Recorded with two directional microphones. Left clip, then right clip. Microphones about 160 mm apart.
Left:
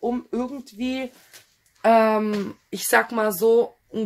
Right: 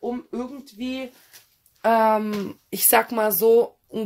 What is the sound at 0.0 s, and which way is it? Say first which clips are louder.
Speech: left 3 dB; 10° left (ahead or behind).